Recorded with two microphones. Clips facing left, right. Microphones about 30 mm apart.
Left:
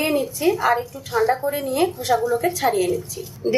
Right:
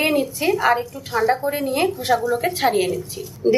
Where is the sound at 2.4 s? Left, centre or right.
Right.